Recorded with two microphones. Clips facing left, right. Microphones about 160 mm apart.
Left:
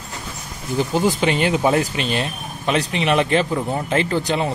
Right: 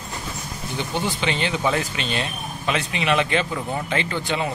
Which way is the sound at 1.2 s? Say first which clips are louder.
Left 6 dB; 45° left (ahead or behind).